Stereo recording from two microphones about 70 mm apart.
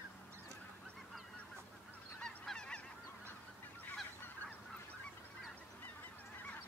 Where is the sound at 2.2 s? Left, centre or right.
Centre.